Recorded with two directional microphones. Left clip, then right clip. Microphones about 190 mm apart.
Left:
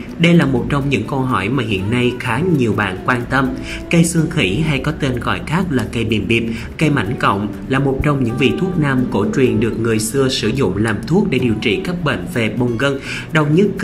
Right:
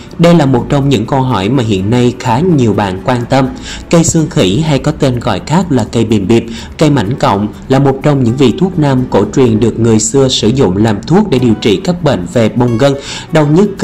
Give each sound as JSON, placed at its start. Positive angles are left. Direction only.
{"t": 0.2, "sound": "speech", "side_deg": -20}